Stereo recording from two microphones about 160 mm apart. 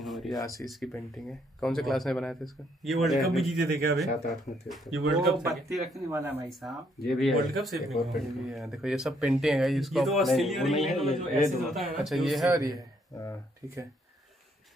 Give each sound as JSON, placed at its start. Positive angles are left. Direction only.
{"t": 0.0, "sound": "a sound", "side_deg": 0}
{"t": 0.3, "sound": "speech", "side_deg": 20}
{"t": 0.7, "sound": "speech", "side_deg": 0}
{"t": 6.0, "sound": "speech", "side_deg": -15}
{"t": 7.1, "sound": "speech", "side_deg": 0}
{"t": 12.4, "sound": "a man's voice", "side_deg": -20}